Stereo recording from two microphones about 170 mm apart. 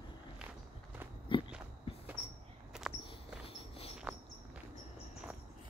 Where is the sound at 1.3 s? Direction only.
30° left (ahead or behind).